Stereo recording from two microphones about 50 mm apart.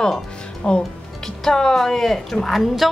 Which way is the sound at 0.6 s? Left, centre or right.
Left.